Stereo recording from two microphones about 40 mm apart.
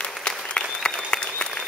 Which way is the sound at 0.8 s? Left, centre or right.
Left.